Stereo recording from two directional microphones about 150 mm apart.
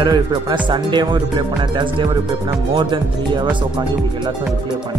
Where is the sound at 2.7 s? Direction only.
30° right (ahead or behind).